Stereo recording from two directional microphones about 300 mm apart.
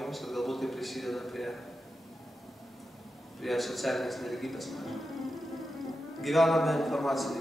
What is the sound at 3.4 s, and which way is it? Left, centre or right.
A man's voice, centre.